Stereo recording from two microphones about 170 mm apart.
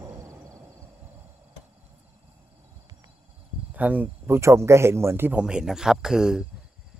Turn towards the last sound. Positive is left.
turn(degrees=-5)  # may be behind; listen again after turning